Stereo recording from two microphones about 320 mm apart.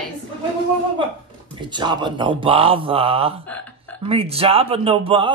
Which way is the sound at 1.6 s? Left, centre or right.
Centre.